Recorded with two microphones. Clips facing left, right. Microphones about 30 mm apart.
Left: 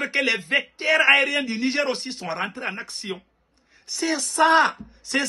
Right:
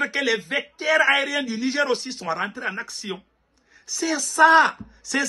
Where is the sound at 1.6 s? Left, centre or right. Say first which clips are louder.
Right 1 dB; left.